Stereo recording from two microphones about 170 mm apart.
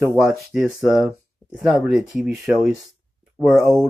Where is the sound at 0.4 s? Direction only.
Centre (ahead or behind).